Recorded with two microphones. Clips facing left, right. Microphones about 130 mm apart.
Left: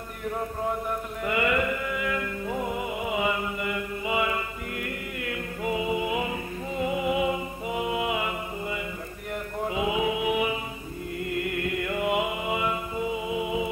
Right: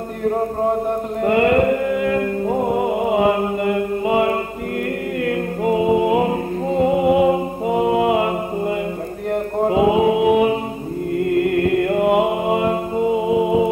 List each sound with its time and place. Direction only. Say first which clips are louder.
0.2 s chant: right 11 dB; 45° right (ahead or behind)
5.2 s music: right 11 dB; 45° right (ahead or behind)
9.3 s mantra: right 12 dB; 45° right (ahead or behind)